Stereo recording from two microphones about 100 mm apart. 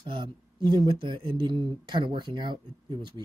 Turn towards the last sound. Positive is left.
turn(degrees=-50)  # may be behind; listen again after turning